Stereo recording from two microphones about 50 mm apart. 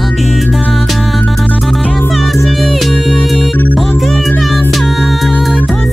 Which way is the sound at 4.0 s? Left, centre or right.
Centre.